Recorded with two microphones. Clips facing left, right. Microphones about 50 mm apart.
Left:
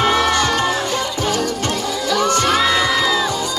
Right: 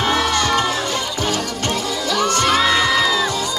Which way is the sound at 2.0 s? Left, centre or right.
Left.